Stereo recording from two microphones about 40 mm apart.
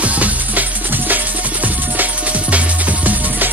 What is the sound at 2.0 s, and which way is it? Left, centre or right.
Music, right.